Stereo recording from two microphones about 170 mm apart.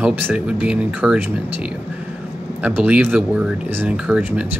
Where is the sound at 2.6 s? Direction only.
10° right (ahead or behind).